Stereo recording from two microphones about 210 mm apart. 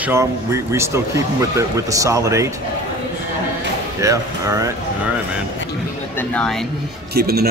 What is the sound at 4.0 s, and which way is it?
Speech, 15° right (ahead or behind).